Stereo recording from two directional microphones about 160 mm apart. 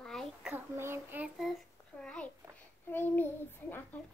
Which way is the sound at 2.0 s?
5° left (ahead or behind).